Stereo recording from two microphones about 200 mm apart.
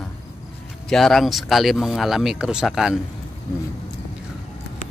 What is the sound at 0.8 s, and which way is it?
Speech, centre (ahead or behind).